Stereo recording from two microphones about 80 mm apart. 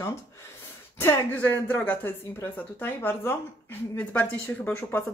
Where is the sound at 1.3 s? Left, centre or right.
Left.